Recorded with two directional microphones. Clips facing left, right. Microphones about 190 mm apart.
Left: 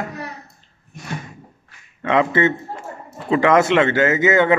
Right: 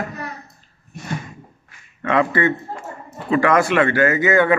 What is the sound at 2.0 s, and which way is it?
A man's voice, 20° left (ahead or behind).